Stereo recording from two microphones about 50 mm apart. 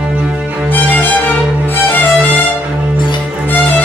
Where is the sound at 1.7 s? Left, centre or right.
Left.